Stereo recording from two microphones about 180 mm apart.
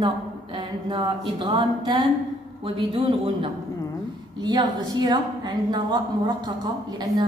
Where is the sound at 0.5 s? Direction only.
25° right (ahead or behind).